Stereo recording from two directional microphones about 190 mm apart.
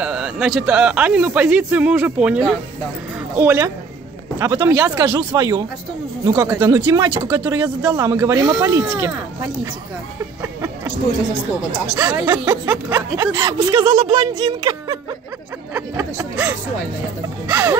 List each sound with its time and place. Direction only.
0.0 s speech: 5° right (ahead or behind)
10.4 s a sound: 15° right (ahead or behind)
11.9 s speech: 15° right (ahead or behind)